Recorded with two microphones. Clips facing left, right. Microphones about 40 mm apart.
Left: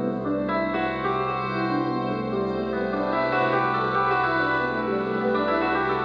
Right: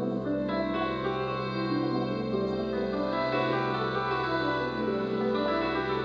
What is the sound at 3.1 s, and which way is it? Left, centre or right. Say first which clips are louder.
Music: left 7 dB; centre.